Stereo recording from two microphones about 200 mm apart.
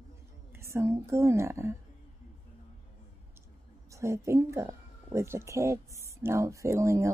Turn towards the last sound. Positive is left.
turn(degrees=-15)  # may be behind; listen again after turning